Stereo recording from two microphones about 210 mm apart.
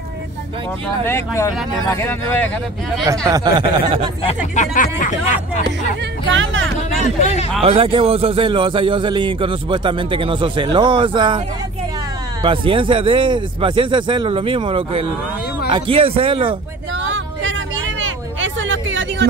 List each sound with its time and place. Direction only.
1.0 s speech: 10° left (ahead or behind)
3.3 s a man's voice: 20° right (ahead or behind)
4.6 s speech: 40° left (ahead or behind)
6.3 s speech: 65° right (ahead or behind)
7.2 s a man's voice: 30° left (ahead or behind)
7.6 s a man's voice: 25° right (ahead or behind)
16.9 s vehicle: 65° right (ahead or behind)